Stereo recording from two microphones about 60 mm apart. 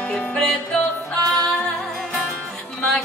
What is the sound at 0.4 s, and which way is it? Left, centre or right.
Music, centre.